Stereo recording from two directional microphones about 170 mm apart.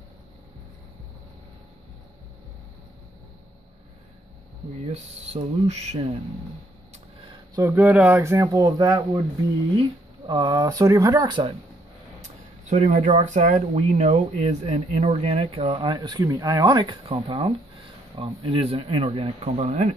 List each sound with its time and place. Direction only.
4.8 s speech: 40° right (ahead or behind)
7.5 s speech: 15° right (ahead or behind)
12.2 s speech: 45° right (ahead or behind)